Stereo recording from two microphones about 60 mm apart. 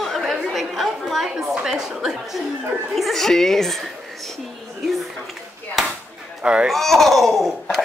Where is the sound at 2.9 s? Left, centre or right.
Centre.